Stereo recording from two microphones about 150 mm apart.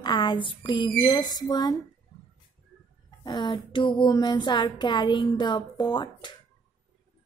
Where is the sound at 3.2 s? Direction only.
30° left (ahead or behind).